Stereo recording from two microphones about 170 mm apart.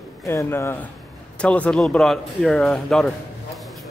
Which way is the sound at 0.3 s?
15° left (ahead or behind).